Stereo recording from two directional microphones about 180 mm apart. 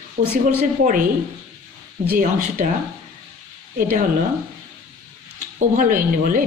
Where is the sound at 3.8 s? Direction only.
50° right (ahead or behind).